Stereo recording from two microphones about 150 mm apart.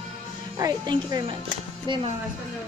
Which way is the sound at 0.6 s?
25° right (ahead or behind).